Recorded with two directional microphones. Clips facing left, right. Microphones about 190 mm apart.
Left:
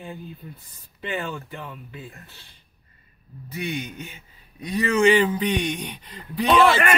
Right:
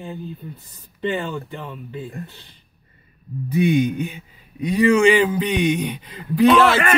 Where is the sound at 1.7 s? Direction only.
35° right (ahead or behind).